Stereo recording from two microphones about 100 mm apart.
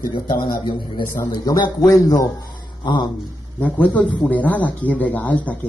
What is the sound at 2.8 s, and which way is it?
Speech, 45° left (ahead or behind).